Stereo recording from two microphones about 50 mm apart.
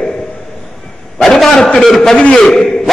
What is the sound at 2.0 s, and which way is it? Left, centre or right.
Speech, centre.